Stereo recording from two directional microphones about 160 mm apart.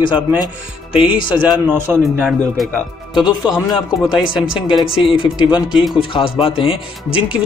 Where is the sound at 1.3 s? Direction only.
10° right (ahead or behind).